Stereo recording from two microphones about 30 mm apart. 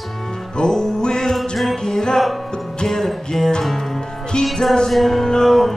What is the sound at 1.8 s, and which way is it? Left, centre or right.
Music, left.